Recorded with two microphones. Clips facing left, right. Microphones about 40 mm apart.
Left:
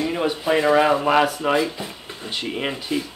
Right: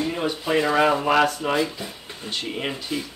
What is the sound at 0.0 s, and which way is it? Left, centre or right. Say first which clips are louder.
Speech: left 3 dB; centre.